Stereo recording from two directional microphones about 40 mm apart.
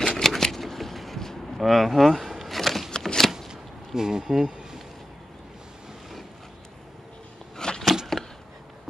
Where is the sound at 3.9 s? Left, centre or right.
Centre.